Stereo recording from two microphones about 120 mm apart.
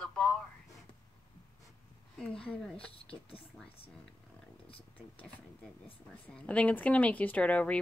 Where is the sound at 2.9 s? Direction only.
50° left (ahead or behind).